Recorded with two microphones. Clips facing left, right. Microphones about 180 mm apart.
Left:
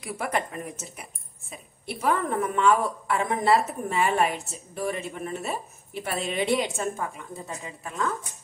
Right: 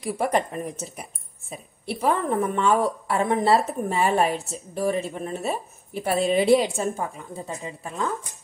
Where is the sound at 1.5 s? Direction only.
30° right (ahead or behind).